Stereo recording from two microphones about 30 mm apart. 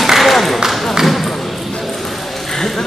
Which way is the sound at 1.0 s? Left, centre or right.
Centre.